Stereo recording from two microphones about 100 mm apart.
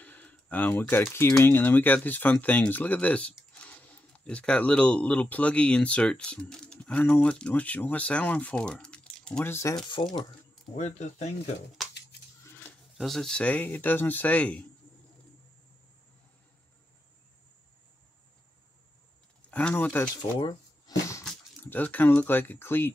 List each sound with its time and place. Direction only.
0.0 s speech: 15° left (ahead or behind)
9.4 s speech: 25° left (ahead or behind)
9.8 s speech: 50° left (ahead or behind)
12.9 s speech: centre (ahead or behind)
19.5 s speech: 15° left (ahead or behind)
20.2 s a sound: 45° left (ahead or behind)
21.6 s speech: 15° left (ahead or behind)